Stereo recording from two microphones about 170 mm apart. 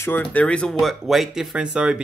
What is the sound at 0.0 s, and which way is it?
Speech, 10° left (ahead or behind).